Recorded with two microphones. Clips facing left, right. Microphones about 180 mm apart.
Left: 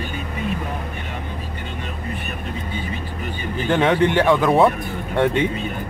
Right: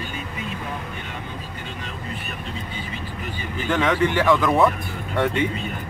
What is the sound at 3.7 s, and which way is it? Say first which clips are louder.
Speech: left 3 dB; 25° left (ahead or behind).